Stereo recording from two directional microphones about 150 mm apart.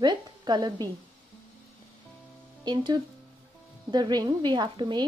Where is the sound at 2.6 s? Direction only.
30° right (ahead or behind).